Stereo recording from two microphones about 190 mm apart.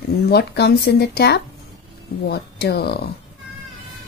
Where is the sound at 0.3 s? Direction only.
60° left (ahead or behind).